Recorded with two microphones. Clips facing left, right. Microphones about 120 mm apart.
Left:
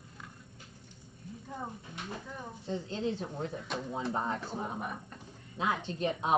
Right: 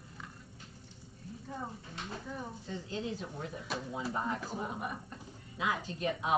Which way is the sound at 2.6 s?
30° left (ahead or behind).